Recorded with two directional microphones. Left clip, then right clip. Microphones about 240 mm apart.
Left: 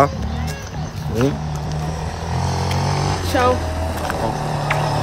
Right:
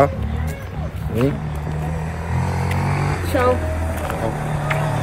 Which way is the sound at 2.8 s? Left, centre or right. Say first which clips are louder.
Left 2 dB; left.